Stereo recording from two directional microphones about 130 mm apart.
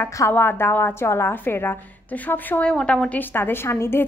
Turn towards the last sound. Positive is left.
turn(degrees=20)  # may be behind; listen again after turning